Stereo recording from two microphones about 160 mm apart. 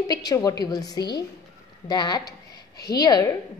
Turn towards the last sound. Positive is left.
turn(degrees=20)  # may be behind; listen again after turning